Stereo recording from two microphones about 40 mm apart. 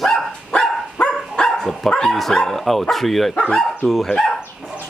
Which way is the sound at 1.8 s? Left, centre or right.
Centre.